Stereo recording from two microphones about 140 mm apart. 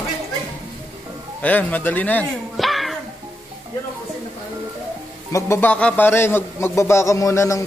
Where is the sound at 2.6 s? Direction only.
Centre (ahead or behind).